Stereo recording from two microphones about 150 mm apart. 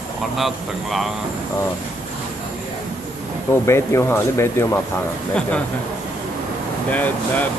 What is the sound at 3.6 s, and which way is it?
Speech, 20° left (ahead or behind).